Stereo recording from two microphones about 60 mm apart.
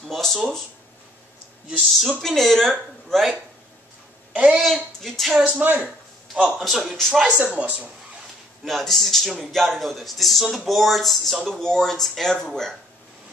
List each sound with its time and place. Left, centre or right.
0.1 s speech: centre
1.8 s speech: centre
4.3 s a sound: centre
4.6 s speech: centre
5.4 s speech: right
6.3 s a man's voice: centre
7.2 s speech: right
8.6 s speech: centre